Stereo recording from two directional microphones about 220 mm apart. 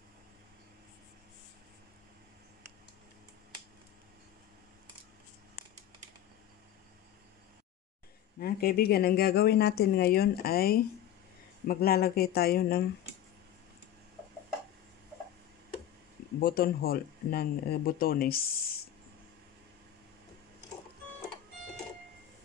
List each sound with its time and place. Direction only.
8.4 s speech: 45° left (ahead or behind)
16.3 s speech: 40° left (ahead or behind)